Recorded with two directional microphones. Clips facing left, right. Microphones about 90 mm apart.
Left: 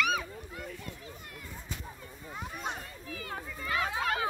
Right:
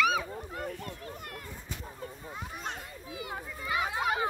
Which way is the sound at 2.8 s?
15° right (ahead or behind).